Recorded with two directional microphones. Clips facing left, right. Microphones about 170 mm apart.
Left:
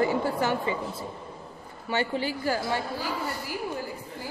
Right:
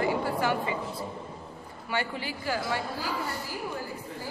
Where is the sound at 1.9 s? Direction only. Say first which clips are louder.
Left 5 dB; 30° left (ahead or behind).